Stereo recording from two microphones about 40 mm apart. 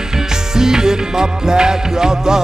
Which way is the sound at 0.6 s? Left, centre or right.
Centre.